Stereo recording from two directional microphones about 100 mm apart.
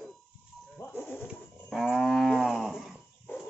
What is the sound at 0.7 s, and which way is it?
Bird, 25° left (ahead or behind).